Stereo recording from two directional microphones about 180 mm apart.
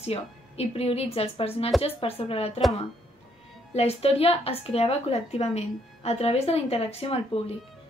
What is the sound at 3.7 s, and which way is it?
A woman's voice, 35° left (ahead or behind).